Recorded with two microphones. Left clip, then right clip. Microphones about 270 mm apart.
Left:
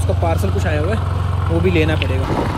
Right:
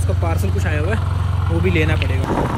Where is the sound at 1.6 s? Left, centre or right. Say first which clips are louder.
Left 2 dB; centre.